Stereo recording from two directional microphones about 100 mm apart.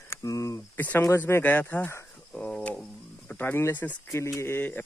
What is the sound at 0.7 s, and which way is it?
Speech, 20° left (ahead or behind).